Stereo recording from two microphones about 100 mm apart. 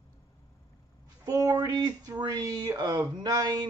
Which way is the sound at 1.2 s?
40° right (ahead or behind).